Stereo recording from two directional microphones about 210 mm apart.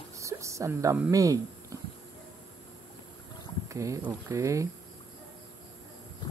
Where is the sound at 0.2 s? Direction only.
15° right (ahead or behind).